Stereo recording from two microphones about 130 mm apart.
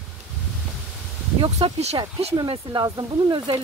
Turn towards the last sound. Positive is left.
turn(degrees=-35)  # may be behind; listen again after turning